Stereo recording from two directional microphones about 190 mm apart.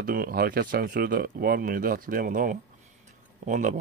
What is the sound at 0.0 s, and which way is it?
Speech, 50° right (ahead or behind).